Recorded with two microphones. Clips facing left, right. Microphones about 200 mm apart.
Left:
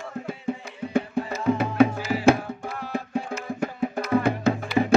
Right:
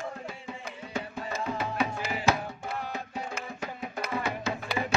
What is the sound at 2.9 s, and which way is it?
Music, 55° left (ahead or behind).